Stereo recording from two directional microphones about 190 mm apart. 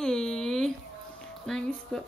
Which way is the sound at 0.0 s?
5° left (ahead or behind).